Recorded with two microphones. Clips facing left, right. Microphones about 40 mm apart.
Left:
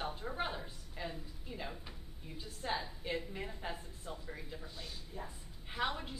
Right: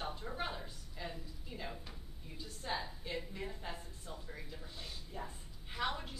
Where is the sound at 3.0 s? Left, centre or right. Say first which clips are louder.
Left 2 dB; centre.